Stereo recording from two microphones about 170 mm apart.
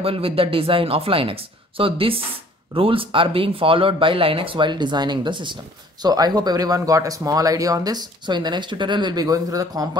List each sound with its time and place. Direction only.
0.0 s speech: 35° right (ahead or behind)